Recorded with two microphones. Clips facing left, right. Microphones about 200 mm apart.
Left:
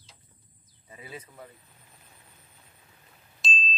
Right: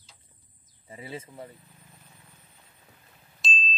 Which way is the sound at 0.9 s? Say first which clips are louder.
Right 4 dB; 25° right (ahead or behind).